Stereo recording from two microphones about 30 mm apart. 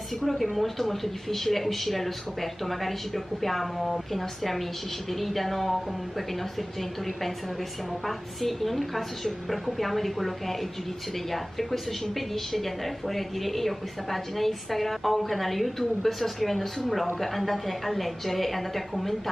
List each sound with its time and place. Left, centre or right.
0.2 s a woman's voice: centre
8.4 s a woman's voice: centre